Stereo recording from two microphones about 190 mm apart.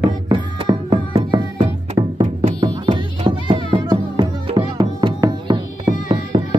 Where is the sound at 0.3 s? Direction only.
25° right (ahead or behind).